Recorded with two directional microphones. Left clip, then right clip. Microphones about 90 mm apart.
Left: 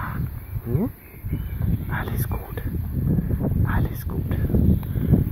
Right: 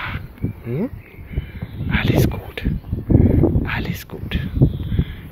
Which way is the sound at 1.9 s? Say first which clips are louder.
Right 11 dB; 20° left (ahead or behind).